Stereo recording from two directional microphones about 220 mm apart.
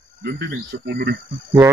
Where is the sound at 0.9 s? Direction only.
50° right (ahead or behind).